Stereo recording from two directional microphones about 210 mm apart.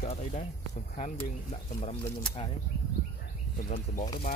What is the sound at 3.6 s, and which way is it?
Speech, 35° left (ahead or behind).